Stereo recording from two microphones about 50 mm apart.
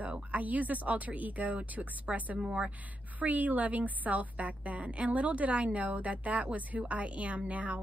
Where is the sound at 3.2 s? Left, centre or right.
Right.